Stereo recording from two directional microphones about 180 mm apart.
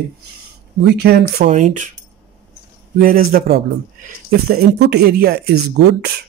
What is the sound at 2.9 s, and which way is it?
Speech, 55° right (ahead or behind).